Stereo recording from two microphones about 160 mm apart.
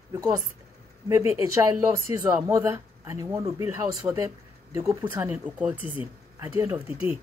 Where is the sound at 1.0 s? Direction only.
20° right (ahead or behind).